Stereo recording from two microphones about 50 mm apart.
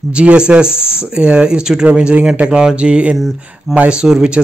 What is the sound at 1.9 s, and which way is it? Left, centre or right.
A man's voice, right.